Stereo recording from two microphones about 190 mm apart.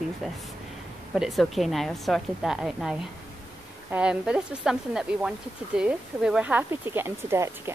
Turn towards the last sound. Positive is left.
turn(degrees=-15)  # may be behind; listen again after turning